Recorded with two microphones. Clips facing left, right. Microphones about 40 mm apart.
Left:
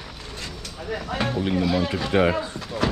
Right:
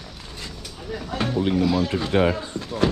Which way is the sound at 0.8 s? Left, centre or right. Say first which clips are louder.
Left 2 dB; left.